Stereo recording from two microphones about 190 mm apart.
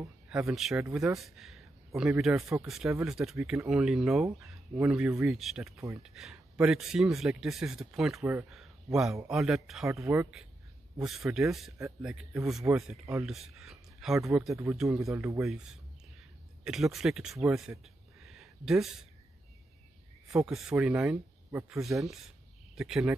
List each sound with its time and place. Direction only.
0.3 s speech: centre (ahead or behind)
9.8 s speech: 15° right (ahead or behind)
14.5 s speech: 15° right (ahead or behind)
18.2 s a sound: centre (ahead or behind)
20.2 s speech: 5° right (ahead or behind)
22.8 s speech: 5° right (ahead or behind)